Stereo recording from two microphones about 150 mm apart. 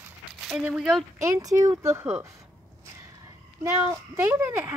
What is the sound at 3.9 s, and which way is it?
Speech, 20° right (ahead or behind).